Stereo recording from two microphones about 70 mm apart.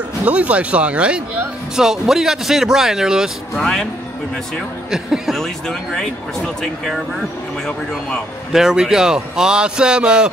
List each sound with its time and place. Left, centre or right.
0.2 s speech: centre
3.5 s speech: centre
4.9 s speech: centre
8.5 s speech: centre